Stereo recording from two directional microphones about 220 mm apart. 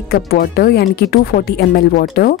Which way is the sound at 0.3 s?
45° left (ahead or behind).